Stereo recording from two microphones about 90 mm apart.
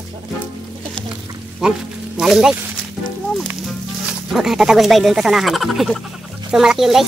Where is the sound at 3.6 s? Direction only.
5° right (ahead or behind).